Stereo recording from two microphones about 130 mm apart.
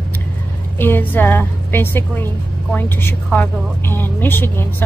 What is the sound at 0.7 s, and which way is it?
A woman's voice, 15° left (ahead or behind).